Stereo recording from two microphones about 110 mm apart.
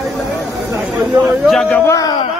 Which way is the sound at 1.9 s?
35° left (ahead or behind).